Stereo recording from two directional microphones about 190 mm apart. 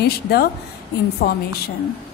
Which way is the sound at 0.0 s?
55° left (ahead or behind).